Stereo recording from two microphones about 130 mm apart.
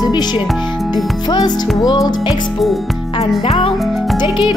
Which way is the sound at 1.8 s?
30° left (ahead or behind).